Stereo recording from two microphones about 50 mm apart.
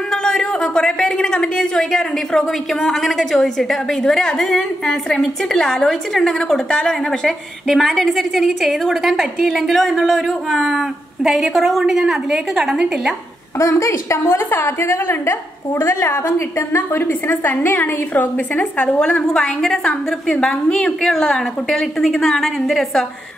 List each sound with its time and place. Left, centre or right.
0.1 s a woman's voice: centre
13.6 s a woman's voice: left
14.2 s a woman's voice: left
15.7 s a woman's voice: left
16.3 s a woman's voice: left
18.6 s a woman's voice: left
19.2 s a woman's voice: centre